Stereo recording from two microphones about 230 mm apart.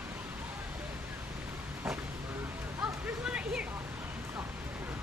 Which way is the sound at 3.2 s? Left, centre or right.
Centre.